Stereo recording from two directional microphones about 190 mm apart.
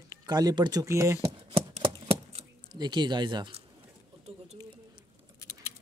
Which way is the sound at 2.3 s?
25° right (ahead or behind).